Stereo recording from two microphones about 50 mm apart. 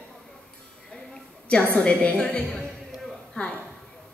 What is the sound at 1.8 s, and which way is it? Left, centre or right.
A woman's voice, left.